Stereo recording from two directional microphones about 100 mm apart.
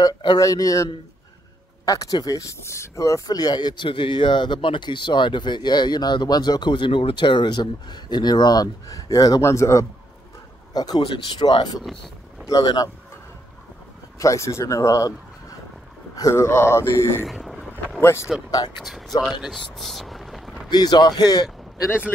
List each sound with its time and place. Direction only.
0.0 s speech: 40° left (ahead or behind)
10.7 s speech: 40° left (ahead or behind)
11.0 s speech: 55° left (ahead or behind); by 12.9 s 35° left (ahead or behind)
14.1 s speech: 30° left (ahead or behind)
16.2 s speech: 30° left (ahead or behind)
17.3 s boat: centre (ahead or behind)
18.0 s speech: 25° left (ahead or behind)
18.5 s speech: 40° left (ahead or behind)
18.8 s speech: centre (ahead or behind)
19.4 s a sound: centre (ahead or behind)
20.7 s speech: 45° left (ahead or behind)